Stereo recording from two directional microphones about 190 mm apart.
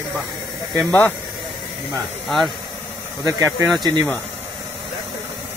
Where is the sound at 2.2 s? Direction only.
Centre (ahead or behind).